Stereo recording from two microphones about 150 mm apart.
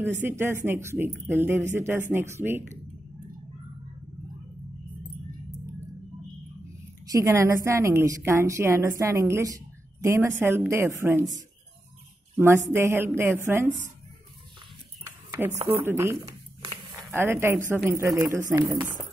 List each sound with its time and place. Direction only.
0.2 s a woman's voice: 15° right (ahead or behind)
7.1 s a woman's voice: 20° right (ahead or behind)
12.4 s a woman's voice: 20° right (ahead or behind)
15.0 s a sound: 15° right (ahead or behind)
15.8 s a woman's voice: 15° right (ahead or behind)